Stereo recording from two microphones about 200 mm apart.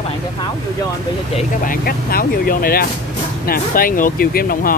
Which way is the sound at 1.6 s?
50° left (ahead or behind).